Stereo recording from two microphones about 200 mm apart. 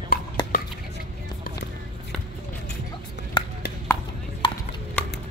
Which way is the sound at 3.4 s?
20° left (ahead or behind).